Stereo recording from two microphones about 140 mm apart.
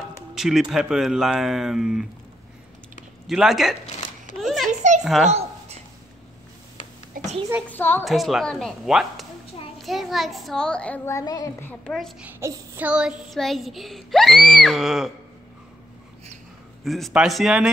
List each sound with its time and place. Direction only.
0.3 s child singing: 5° right (ahead or behind)
3.3 s child singing: centre (ahead or behind)
4.4 s a sound: centre (ahead or behind)
4.6 s a sound: 60° right (ahead or behind)
5.0 s a child's voice: centre (ahead or behind)
7.2 s a sound: 75° right (ahead or behind)
7.6 s a child's voice: 15° left (ahead or behind)
8.0 s child singing: centre (ahead or behind)
9.8 s a child's voice: centre (ahead or behind)
11.1 s a woman's voice: 25° left (ahead or behind)
11.6 s child singing: 5° left (ahead or behind)
12.2 s child singing: 15° right (ahead or behind)
16.8 s child singing: centre (ahead or behind)